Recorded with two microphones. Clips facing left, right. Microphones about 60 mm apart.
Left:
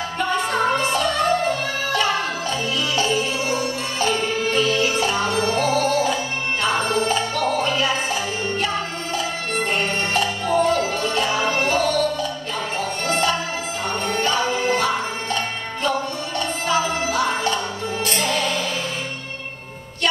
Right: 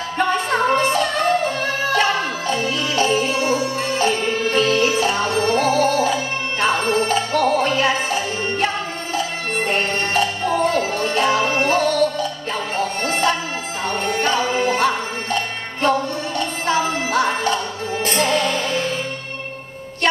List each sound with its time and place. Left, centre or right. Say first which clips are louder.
0.5 s music: right 2 dB; right
13.8 s music: right 2 dB; right
16.6 s music: right 1 dB; right